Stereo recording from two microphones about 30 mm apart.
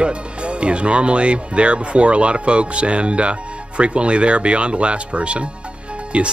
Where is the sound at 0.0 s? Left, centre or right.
Right.